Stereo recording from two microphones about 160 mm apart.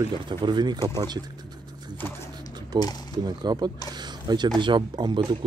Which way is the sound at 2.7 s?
25° right (ahead or behind).